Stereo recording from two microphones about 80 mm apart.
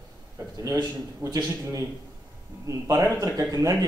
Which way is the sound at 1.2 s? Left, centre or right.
Right.